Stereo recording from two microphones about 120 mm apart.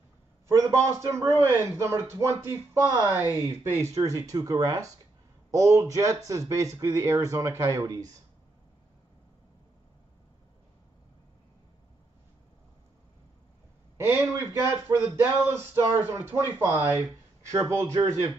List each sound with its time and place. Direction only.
0.5 s speech: 25° right (ahead or behind)
13.9 s a man's voice: 20° right (ahead or behind)